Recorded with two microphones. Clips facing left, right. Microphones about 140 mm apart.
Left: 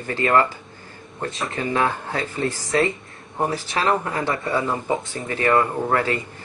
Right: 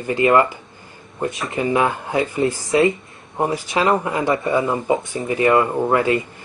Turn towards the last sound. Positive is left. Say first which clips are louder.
# right 4 dB
turn(degrees=-15)  # may be behind; listen again after turning